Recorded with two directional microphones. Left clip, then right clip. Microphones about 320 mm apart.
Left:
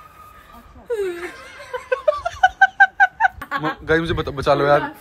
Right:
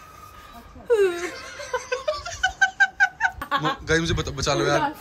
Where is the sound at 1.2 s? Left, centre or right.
Centre.